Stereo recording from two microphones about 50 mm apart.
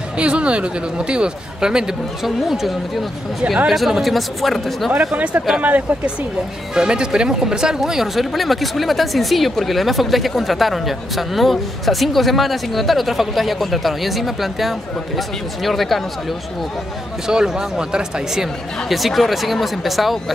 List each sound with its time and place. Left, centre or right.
0.2 s speech: right; by 4.9 s centre
5.1 s speech: right
6.7 s speech: centre
17.3 s speech: centre